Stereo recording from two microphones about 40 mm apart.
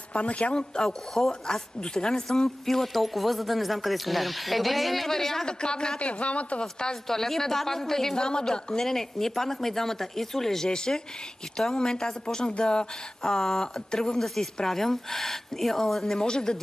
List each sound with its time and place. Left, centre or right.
0.1 s a woman's voice: left
0.8 s a woman's voice: centre
5.5 s a woman's voice: left
6.6 s a woman's voice: centre
8.8 s a woman's voice: centre